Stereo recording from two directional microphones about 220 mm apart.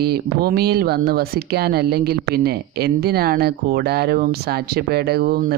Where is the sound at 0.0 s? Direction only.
45° right (ahead or behind).